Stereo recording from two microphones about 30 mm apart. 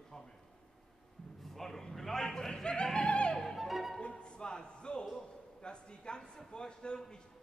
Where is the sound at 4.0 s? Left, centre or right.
Left.